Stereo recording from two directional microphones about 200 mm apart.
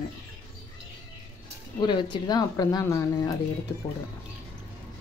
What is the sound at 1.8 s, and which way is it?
Speech, 25° left (ahead or behind).